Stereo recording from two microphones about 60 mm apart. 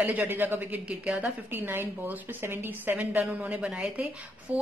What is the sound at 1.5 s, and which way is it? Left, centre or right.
A woman's voice, right.